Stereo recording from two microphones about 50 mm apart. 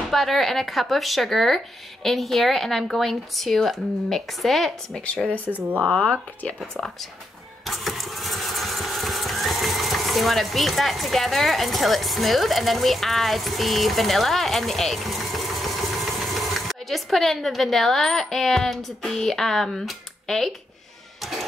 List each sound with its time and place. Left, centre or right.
0.1 s speech: centre
5.8 s speech: left
6.8 s speech: centre
7.6 s vehicle: centre
21.2 s a sound: centre